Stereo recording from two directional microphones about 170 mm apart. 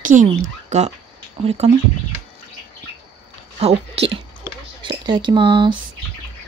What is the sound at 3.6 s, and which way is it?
Speech, 35° right (ahead or behind).